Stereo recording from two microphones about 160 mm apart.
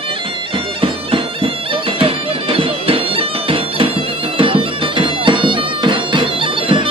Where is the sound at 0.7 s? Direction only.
35° right (ahead or behind).